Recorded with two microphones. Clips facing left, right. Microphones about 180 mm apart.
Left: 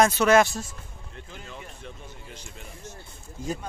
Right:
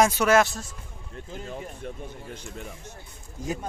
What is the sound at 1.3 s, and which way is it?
Speech, 40° right (ahead or behind).